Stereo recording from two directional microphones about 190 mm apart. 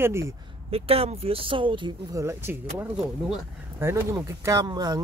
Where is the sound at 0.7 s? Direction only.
30° right (ahead or behind).